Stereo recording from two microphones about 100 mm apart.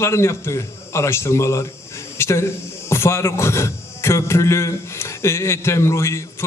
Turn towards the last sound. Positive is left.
turn(degrees=30)  # may be behind; listen again after turning